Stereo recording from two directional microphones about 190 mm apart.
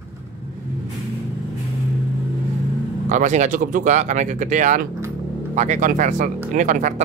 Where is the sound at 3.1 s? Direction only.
40° right (ahead or behind).